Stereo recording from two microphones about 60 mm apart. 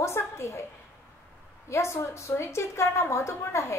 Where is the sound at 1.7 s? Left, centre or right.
Left.